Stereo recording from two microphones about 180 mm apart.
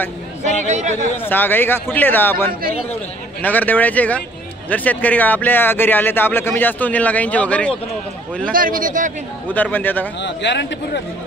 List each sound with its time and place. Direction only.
0.7 s a sound: 40° right (ahead or behind)
1.1 s speech: 10° left (ahead or behind)
8.5 s speech: 50° right (ahead or behind)
9.5 s speech: 10° left (ahead or behind)
10.2 s speech: 75° left (ahead or behind)